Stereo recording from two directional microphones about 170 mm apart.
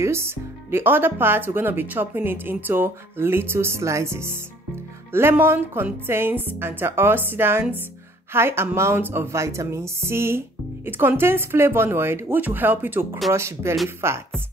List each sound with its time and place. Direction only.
0.0 s speech: 15° right (ahead or behind)